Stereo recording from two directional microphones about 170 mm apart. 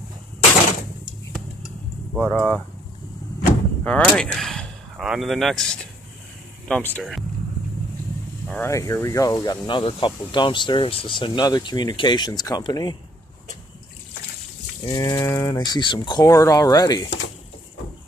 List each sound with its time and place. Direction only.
2.1 s speech: 5° right (ahead or behind)
3.8 s speech: 5° left (ahead or behind)
7.0 s speech: centre (ahead or behind)
8.5 s speech: 15° left (ahead or behind)
14.9 s speech: 20° left (ahead or behind)